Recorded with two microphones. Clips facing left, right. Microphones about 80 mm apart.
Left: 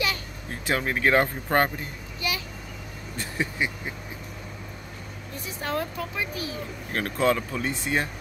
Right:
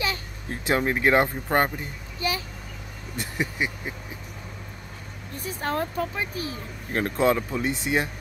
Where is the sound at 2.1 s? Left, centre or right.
Right.